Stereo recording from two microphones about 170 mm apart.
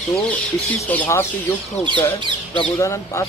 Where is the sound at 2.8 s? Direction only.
15° left (ahead or behind).